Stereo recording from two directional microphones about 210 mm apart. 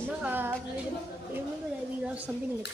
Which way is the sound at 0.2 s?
10° right (ahead or behind).